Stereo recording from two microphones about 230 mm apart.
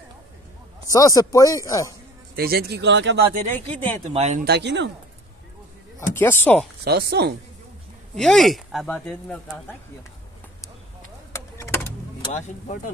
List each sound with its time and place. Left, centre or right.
0.9 s speech: centre
2.3 s speech: right
3.6 s speech: centre
4.1 s speech: right
4.5 s speech: right
6.1 s speech: centre
6.8 s speech: right
8.2 s speech: centre
11.3 s a sound: centre
12.3 s speech: left